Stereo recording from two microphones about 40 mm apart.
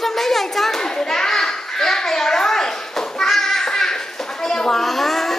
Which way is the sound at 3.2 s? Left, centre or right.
Centre.